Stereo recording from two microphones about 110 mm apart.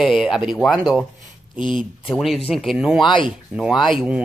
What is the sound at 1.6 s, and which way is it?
Speech, 50° left (ahead or behind).